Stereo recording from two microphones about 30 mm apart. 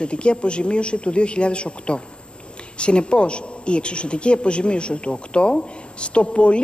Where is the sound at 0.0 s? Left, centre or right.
Left.